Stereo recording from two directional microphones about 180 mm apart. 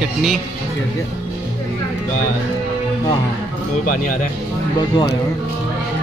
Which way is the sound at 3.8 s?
50° left (ahead or behind).